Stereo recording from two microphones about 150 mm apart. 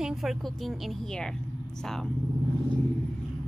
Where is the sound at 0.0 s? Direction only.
Centre (ahead or behind).